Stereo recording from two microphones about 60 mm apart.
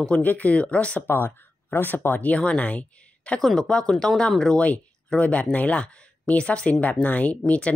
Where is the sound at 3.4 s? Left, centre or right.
Centre.